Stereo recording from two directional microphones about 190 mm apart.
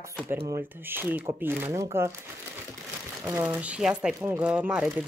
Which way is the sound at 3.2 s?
10° right (ahead or behind).